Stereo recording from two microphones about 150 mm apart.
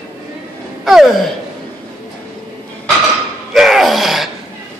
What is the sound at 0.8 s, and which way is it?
Gasp, centre (ahead or behind).